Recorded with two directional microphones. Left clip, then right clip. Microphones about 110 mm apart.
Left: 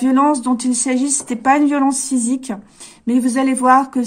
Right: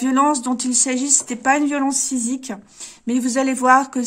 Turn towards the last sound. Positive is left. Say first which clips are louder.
# left 2 dB
turn(degrees=-20)  # may be behind; listen again after turning